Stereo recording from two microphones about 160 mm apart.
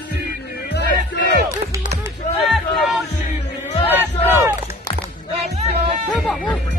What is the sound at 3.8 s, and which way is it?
Battle cry, 10° right (ahead or behind).